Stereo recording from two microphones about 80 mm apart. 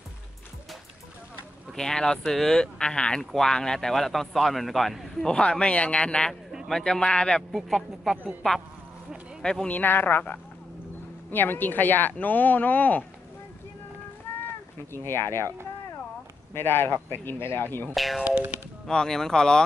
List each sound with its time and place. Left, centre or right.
1.8 s speech: centre
9.8 s speech: left
14.9 s speech: left
16.5 s speech: left
17.9 s speech: centre
18.2 s music: centre
18.9 s speech: centre